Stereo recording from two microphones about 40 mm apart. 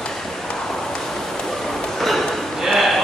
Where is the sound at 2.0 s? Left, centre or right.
Centre.